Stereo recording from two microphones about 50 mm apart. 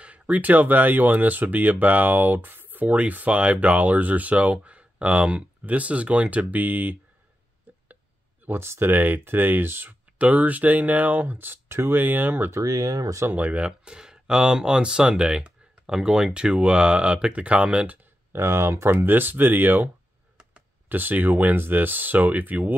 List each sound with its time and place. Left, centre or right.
0.0 s speech: right
8.5 s speech: right
8.9 s speech: right
10.1 s speech: right
18.3 s speech: right
19.0 s speech: right
20.9 s speech: right